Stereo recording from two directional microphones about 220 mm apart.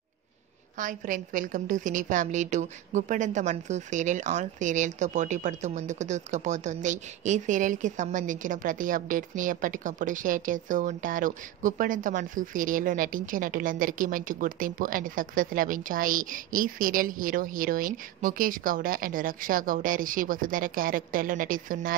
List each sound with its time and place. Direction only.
0.7 s a woman's voice: 35° right (ahead or behind)